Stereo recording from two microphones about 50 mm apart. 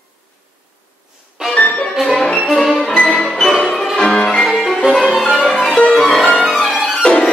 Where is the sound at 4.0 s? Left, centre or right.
Centre.